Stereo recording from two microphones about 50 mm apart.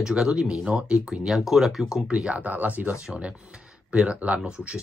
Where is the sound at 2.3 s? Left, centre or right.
Right.